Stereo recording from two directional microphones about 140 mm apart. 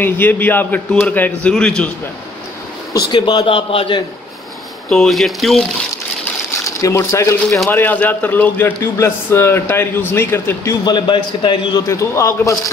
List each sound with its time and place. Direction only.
0.0 s a man's voice: 15° left (ahead or behind)
3.1 s a man's voice: 35° left (ahead or behind)
4.8 s speech: centre (ahead or behind)
6.8 s a man's voice: 20° left (ahead or behind)
10.9 s a man's voice: 35° left (ahead or behind)
11.9 s a man's voice: 20° left (ahead or behind)